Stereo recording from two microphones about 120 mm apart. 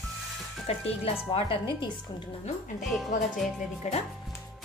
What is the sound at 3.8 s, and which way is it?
Speech, 70° left (ahead or behind).